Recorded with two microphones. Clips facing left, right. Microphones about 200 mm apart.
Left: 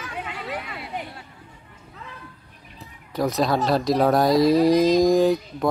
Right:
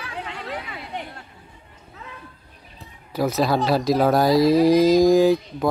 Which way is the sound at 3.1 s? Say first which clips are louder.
Right 1 dB; 5° right (ahead or behind).